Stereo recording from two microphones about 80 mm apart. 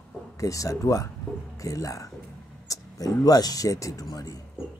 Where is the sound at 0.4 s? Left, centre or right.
Left.